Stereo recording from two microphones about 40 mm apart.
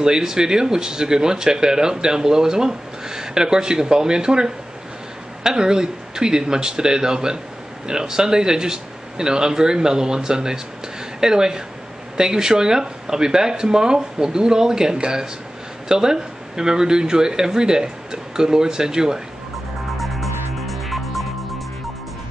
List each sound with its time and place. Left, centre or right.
0.0 s speech: centre
20.0 s music: centre